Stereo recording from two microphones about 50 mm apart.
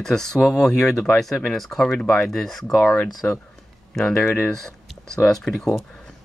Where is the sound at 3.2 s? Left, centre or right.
Left.